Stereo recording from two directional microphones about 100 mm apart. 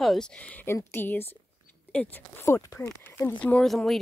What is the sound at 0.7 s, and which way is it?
Speech, 25° left (ahead or behind).